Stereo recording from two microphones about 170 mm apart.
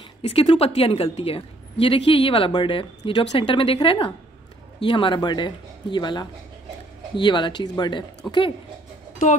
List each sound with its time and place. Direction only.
0.3 s a woman's voice: 35° left (ahead or behind)